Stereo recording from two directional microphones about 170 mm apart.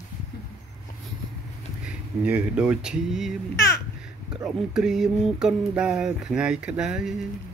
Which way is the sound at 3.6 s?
20° left (ahead or behind).